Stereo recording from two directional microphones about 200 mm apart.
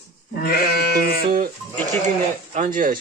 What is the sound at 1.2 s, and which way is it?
Goat, 45° right (ahead or behind).